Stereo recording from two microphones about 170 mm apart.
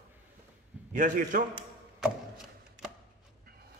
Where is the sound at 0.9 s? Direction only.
50° right (ahead or behind).